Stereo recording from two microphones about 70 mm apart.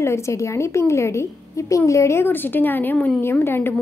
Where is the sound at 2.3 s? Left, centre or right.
Left.